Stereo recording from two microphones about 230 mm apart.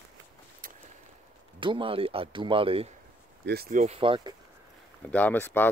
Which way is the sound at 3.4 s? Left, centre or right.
Right.